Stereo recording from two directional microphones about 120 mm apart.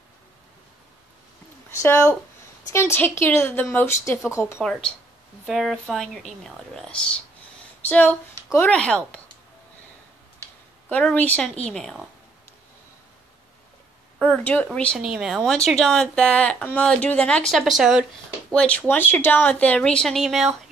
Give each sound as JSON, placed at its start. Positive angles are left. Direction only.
{"t": 1.8, "sound": "a woman's voice", "side_deg": 20}
{"t": 5.5, "sound": "a woman's voice", "side_deg": 0}
{"t": 10.9, "sound": "a woman's voice", "side_deg": 10}
{"t": 14.2, "sound": "speech", "side_deg": 10}
{"t": 15.0, "sound": "a woman's voice", "side_deg": -5}
{"t": 18.5, "sound": "a woman's voice", "side_deg": 10}